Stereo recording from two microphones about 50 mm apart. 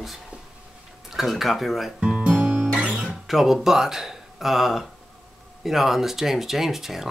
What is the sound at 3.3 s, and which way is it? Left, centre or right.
Speech, centre.